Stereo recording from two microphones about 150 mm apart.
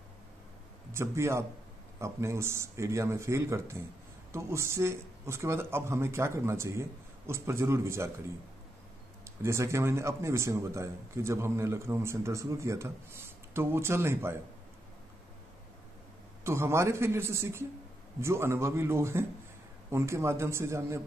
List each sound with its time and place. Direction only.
0.9 s a man's voice: 20° right (ahead or behind)
9.4 s a man's voice: 20° right (ahead or behind)
16.4 s a man's voice: 15° right (ahead or behind)